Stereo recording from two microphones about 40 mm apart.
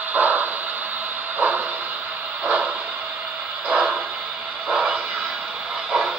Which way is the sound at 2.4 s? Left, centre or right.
Right.